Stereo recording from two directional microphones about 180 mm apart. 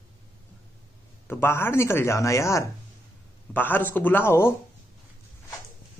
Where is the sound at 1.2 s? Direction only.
15° left (ahead or behind).